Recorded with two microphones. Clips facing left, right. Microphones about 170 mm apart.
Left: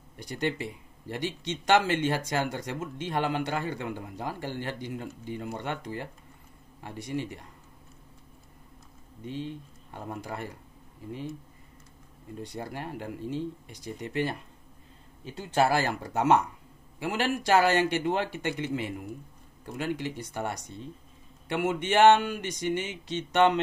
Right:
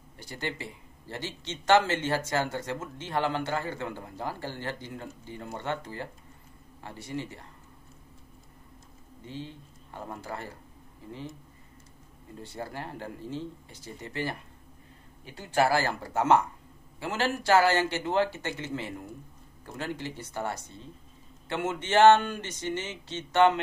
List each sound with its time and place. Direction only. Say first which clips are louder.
0.2 s speech: left 5 dB; 20° left (ahead or behind)
9.2 s speech: left 5 dB; 20° left (ahead or behind)
12.4 s speech: left 1 dB; 20° left (ahead or behind)
15.3 s speech: even; 20° left (ahead or behind)